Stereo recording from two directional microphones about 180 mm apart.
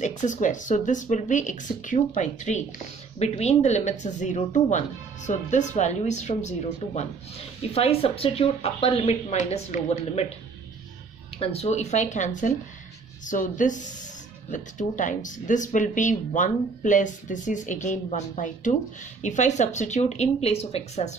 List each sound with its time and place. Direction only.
0.0 s speech: 45° left (ahead or behind)
7.7 s speech: 35° left (ahead or behind)
11.3 s speech: 35° left (ahead or behind)